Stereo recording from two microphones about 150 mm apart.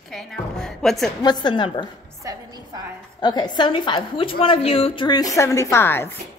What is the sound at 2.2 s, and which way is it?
Music, 25° right (ahead or behind).